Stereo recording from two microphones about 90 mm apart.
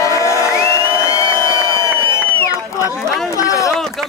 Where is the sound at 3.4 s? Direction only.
40° left (ahead or behind).